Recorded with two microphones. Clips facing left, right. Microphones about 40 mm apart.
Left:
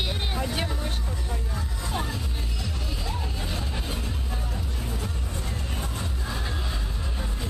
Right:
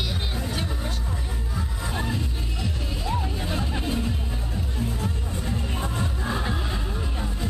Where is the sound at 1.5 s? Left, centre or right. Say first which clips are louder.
Right 2 dB; centre.